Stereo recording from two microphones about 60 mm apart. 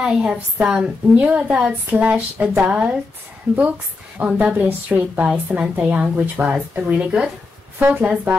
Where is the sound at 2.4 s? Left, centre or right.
Centre.